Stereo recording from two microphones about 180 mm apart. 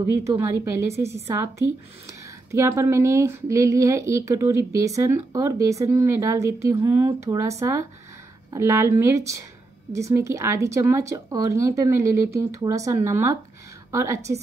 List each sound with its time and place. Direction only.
0.0 s a woman's voice: 15° right (ahead or behind)